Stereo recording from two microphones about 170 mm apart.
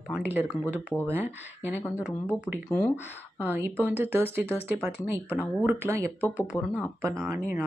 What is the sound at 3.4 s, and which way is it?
Speech, 10° right (ahead or behind).